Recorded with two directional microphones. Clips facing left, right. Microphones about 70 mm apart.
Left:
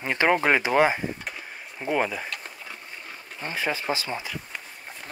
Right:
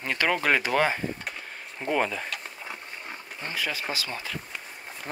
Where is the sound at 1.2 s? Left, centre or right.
Centre.